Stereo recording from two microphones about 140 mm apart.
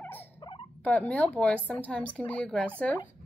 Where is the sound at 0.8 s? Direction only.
10° left (ahead or behind).